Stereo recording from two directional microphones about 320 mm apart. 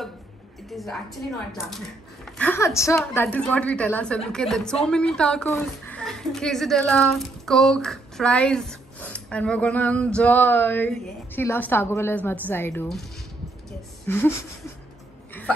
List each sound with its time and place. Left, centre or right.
0.7 s a woman's voice: centre
2.2 s speech: centre
13.7 s a sound: centre